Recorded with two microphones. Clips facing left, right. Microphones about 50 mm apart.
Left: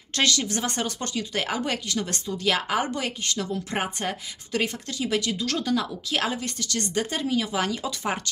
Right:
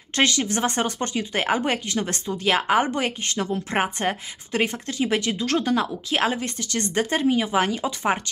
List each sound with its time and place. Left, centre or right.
0.1 s speech: right